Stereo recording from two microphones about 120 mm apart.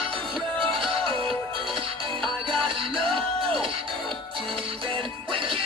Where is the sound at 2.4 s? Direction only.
45° right (ahead or behind).